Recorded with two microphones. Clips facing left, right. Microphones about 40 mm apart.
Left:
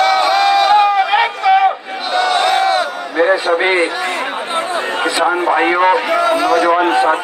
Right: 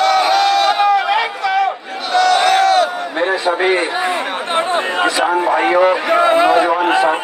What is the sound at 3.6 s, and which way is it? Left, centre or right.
Speech, left.